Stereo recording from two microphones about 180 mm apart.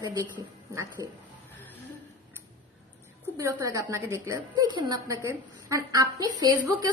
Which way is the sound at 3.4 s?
20° right (ahead or behind).